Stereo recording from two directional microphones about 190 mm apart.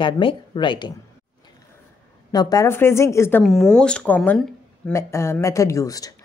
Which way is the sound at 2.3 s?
20° left (ahead or behind).